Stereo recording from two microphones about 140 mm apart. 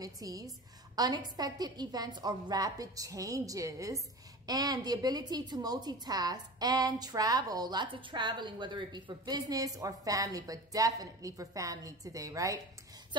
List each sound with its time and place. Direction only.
0.0 s a woman's voice: 25° right (ahead or behind)